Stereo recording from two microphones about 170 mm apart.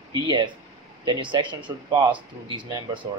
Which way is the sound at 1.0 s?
30° right (ahead or behind).